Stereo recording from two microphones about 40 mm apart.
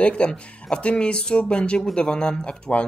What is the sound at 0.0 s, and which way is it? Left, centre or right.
Speech, left.